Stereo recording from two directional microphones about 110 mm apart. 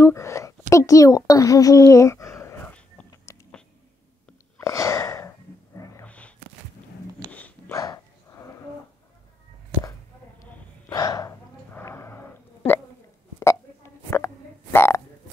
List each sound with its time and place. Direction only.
0.0 s a sound: 25° left (ahead or behind)
3.3 s a sound: 25° left (ahead or behind)
4.6 s sneeze: 30° left (ahead or behind)
6.0 s a sound: 10° left (ahead or behind)
7.2 s dog: 15° left (ahead or behind)
7.7 s dog: 30° left (ahead or behind)
10.9 s hiccup: 35° left (ahead or behind)
11.7 s wheeze: 25° left (ahead or behind)
14.1 s frog: 20° left (ahead or behind)